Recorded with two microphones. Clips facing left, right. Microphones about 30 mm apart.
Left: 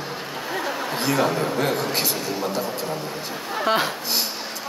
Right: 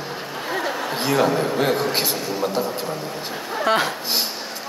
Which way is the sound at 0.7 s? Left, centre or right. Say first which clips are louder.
Right 1 dB; centre.